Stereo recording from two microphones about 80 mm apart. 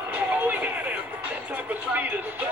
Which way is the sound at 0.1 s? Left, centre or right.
Right.